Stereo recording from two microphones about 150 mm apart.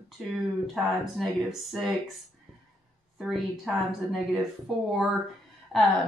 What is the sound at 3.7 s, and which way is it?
Speech, centre (ahead or behind).